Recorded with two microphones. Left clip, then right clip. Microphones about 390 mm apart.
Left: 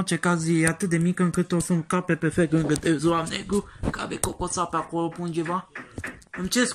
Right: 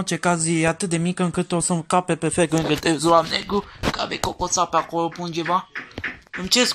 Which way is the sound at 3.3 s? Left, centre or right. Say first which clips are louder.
Right 7 dB; centre.